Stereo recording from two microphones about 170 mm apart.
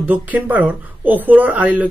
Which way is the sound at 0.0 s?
10° right (ahead or behind).